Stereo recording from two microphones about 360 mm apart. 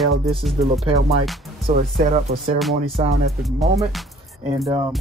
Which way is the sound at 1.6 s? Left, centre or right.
Centre.